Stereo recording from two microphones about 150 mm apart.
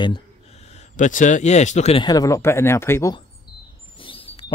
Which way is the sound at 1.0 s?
55° left (ahead or behind).